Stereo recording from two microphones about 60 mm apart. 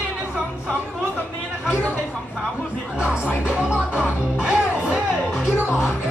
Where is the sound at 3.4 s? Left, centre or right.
Centre.